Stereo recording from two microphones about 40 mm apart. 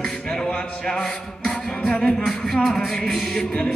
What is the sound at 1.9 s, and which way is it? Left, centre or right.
Music, left.